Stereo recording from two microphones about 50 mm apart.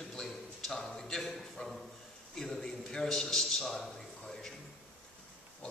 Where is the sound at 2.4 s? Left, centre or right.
Centre.